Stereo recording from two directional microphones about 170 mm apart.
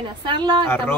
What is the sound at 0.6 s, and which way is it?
Speech, 10° left (ahead or behind).